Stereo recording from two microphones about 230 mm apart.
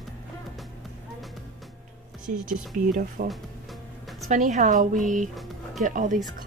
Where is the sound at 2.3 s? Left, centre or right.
Right.